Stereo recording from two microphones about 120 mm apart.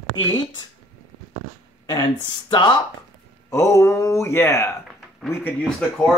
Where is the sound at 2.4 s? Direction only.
40° left (ahead or behind).